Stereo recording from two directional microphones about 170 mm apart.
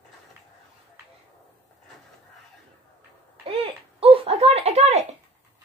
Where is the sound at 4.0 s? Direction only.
35° right (ahead or behind).